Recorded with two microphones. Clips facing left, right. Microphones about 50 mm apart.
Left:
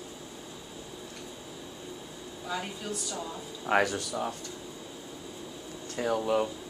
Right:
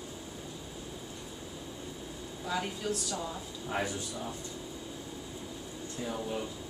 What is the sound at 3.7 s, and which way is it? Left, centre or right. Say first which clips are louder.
Speech: left 8 dB; left.